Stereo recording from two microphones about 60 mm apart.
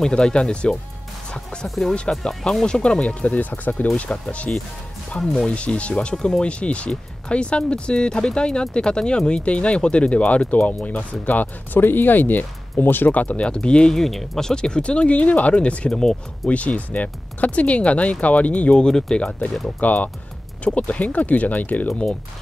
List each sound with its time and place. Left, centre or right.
0.0 s speech: centre
13.9 s speech: centre
15.9 s speech: centre
16.4 s speech: left